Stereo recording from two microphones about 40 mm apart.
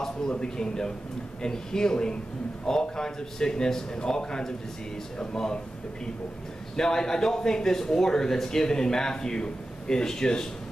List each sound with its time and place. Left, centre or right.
0.4 s speech: centre
6.8 s speech: centre